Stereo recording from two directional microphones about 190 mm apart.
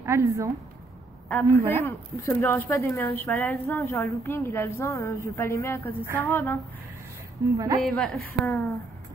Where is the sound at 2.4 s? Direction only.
10° left (ahead or behind).